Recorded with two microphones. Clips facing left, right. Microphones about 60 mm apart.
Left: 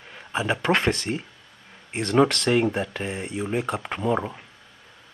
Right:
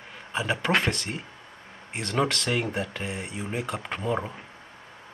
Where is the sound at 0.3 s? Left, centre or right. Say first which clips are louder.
Left 2 dB; centre.